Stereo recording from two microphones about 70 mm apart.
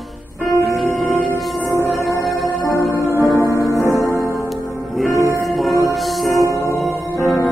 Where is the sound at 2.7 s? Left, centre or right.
Left.